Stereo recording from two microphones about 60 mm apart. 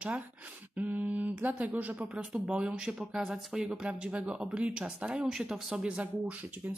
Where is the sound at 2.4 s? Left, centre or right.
Centre.